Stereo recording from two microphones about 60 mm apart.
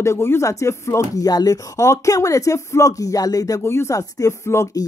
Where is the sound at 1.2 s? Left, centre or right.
Left.